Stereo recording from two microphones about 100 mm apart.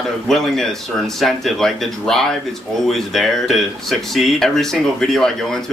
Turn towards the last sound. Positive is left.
turn(degrees=5)  # may be behind; listen again after turning